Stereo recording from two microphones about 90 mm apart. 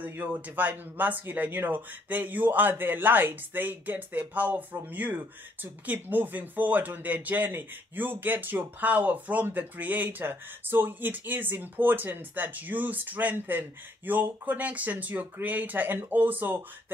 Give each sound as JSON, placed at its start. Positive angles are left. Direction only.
{"t": 0.0, "sound": "speech", "side_deg": -20}